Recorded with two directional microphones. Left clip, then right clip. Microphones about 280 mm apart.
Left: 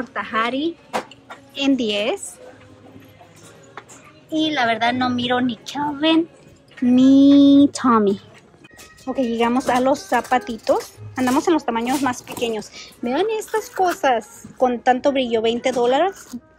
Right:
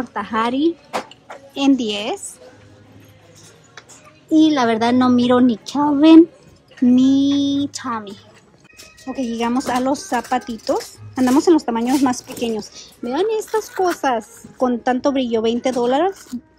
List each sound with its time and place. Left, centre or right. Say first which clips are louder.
0.0 s speech: right 1 dB; centre
4.3 s a child's voice: right 5 dB; centre
6.9 s speech: left 3 dB; centre
13.7 s speech: even; centre
14.0 s speech: left 1 dB; centre